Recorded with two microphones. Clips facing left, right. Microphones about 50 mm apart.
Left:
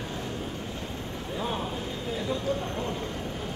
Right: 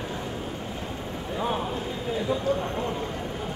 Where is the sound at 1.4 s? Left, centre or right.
Centre.